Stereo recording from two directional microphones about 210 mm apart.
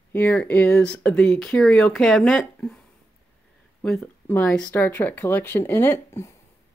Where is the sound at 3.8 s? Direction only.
5° left (ahead or behind).